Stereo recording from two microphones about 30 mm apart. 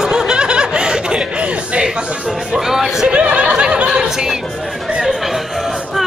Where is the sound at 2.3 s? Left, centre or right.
Centre.